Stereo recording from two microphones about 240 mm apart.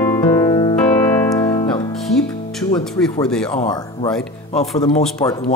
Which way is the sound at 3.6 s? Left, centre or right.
Left.